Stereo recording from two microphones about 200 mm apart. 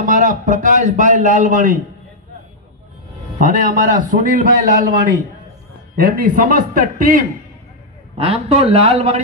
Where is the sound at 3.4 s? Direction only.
40° right (ahead or behind).